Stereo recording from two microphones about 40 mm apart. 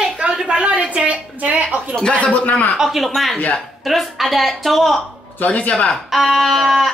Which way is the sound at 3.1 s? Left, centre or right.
Centre.